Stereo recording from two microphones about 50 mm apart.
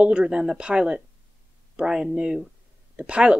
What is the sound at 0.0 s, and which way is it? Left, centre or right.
Speech, right.